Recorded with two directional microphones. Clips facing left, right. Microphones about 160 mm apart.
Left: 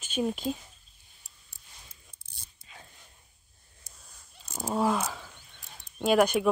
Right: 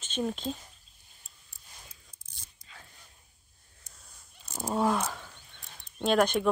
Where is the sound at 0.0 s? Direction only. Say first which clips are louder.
Left 3 dB; 10° left (ahead or behind).